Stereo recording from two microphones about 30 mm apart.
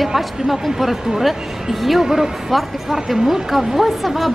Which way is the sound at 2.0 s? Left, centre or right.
Centre.